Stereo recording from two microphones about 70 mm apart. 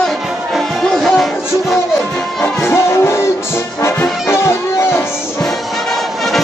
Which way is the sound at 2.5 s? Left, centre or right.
Left.